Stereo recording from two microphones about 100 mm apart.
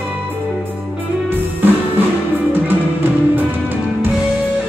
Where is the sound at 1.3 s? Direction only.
20° right (ahead or behind).